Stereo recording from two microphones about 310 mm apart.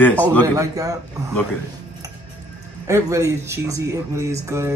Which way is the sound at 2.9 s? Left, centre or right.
Centre.